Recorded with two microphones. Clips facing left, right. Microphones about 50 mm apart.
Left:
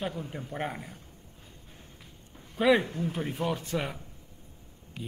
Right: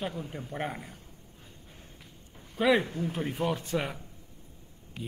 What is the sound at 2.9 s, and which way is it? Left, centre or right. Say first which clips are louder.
Speech: even; right.